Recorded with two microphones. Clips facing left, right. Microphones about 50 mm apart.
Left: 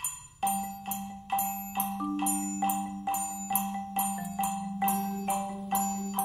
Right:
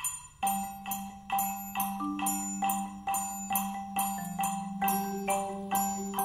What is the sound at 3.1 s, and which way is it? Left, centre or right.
Marimba, right.